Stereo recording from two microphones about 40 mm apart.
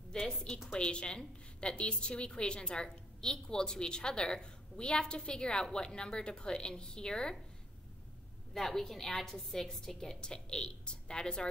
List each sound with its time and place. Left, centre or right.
0.7 s a woman's voice: left
8.5 s a woman's voice: centre